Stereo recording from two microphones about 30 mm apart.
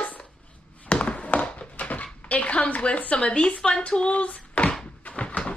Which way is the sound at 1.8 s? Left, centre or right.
Left.